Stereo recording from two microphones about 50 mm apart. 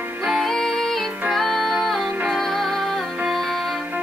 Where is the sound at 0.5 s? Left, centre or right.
Centre.